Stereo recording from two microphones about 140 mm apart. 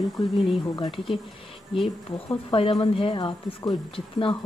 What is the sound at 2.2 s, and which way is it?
A woman's voice, 45° left (ahead or behind).